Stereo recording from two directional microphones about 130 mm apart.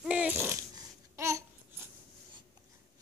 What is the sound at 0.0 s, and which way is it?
Dog, 10° right (ahead or behind).